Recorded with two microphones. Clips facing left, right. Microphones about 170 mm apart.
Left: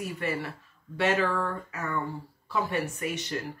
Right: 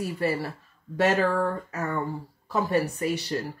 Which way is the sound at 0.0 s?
35° right (ahead or behind).